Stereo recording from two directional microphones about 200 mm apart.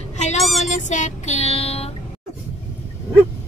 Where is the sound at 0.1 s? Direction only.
35° left (ahead or behind).